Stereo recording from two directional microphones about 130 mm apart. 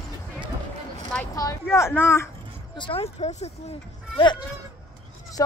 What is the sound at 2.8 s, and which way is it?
Speech, 45° left (ahead or behind).